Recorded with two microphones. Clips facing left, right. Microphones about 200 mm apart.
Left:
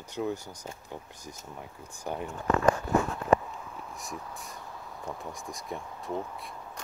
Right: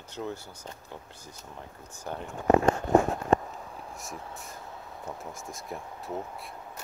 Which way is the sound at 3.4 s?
30° right (ahead or behind).